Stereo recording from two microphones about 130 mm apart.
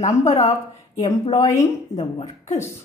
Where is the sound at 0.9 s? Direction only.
55° left (ahead or behind).